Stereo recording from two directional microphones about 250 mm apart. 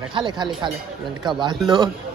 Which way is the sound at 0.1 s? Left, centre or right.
Centre.